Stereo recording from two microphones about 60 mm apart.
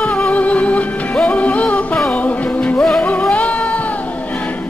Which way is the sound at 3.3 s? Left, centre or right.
Left.